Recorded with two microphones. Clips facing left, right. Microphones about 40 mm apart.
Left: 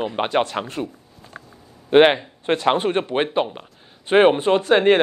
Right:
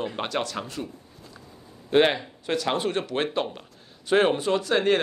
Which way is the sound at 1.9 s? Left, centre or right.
Left.